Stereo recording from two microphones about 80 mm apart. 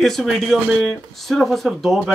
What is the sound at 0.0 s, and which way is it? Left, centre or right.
A man's voice, centre.